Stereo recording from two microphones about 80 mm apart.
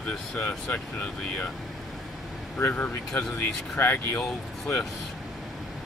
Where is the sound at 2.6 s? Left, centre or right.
Left.